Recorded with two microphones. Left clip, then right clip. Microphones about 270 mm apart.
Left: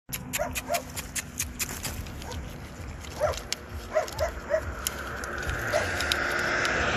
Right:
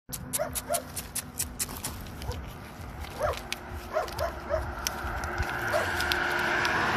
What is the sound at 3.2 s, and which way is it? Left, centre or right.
Dog, centre.